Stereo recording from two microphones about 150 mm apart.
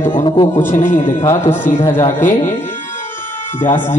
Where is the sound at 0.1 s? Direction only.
35° left (ahead or behind).